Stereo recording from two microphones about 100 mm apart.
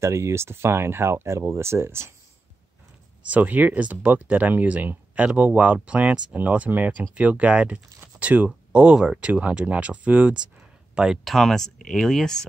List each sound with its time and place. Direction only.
0.0 s speech: 30° right (ahead or behind)
3.3 s speech: 15° right (ahead or behind); by 12.4 s 5° left (ahead or behind)